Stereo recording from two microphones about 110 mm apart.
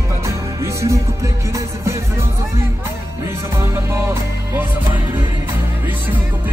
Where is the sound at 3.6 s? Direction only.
25° right (ahead or behind).